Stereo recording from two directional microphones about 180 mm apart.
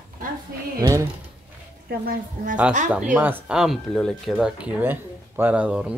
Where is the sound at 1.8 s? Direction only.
55° right (ahead or behind).